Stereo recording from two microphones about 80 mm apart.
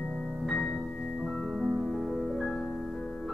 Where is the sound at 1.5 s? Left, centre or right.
Centre.